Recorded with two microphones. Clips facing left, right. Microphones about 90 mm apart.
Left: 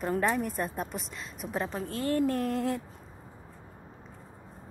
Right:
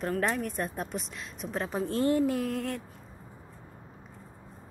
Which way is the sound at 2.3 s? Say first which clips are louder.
Left 2 dB; centre (ahead or behind).